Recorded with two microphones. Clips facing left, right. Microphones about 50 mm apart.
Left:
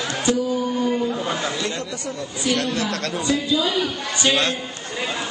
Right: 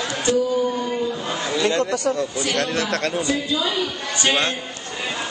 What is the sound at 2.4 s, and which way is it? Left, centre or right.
Speech, right.